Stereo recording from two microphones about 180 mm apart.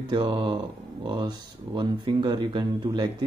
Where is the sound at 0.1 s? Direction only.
25° right (ahead or behind).